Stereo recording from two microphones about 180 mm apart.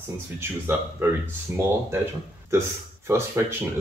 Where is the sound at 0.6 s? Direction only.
15° right (ahead or behind).